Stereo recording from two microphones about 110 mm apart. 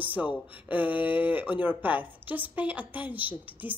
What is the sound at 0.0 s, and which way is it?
A woman's voice, 15° right (ahead or behind).